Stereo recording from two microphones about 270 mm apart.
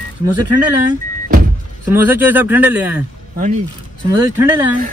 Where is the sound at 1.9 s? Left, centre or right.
Centre.